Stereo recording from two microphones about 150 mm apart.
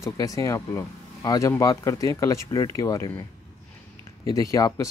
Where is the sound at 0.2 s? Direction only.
20° left (ahead or behind).